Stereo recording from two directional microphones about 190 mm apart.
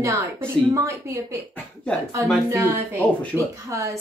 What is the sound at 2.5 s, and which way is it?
A woman's voice, 15° right (ahead or behind).